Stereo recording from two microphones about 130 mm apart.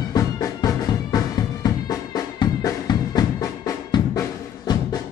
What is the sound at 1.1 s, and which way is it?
Drum, 30° left (ahead or behind).